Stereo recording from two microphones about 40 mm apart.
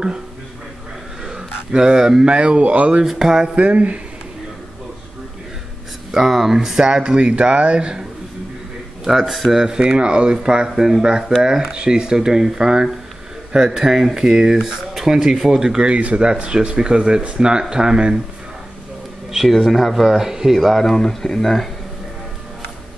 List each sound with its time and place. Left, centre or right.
1.2 s a sound: centre
2.2 s speech: right
3.1 s speech: centre
3.5 s speech: right
6.1 s speech: centre
6.8 s speech: centre
9.0 s speech: centre
9.8 s speech: right
19.3 s speech: centre
20.5 s speech: centre